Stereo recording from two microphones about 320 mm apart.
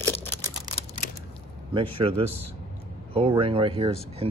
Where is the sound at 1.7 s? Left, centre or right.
Centre.